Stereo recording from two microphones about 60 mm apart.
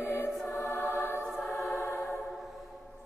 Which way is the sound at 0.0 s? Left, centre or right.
Left.